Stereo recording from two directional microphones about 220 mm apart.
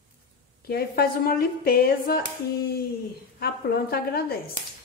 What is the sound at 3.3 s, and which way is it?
Speech, 45° left (ahead or behind).